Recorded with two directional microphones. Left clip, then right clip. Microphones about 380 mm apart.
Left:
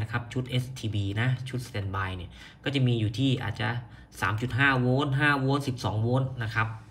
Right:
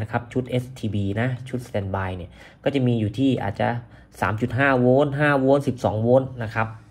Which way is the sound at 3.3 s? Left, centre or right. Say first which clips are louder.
Right 8 dB; centre.